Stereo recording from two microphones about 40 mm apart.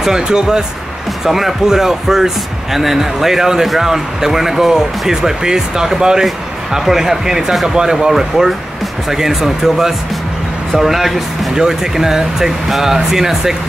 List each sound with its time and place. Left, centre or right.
0.0 s speech: centre